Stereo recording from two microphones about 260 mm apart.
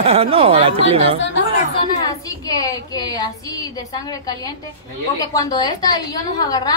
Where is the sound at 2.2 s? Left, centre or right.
Centre.